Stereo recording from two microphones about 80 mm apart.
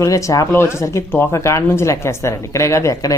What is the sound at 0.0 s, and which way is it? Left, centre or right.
Speech, left.